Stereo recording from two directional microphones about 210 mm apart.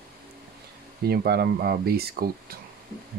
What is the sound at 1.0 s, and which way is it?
Speech, 45° right (ahead or behind).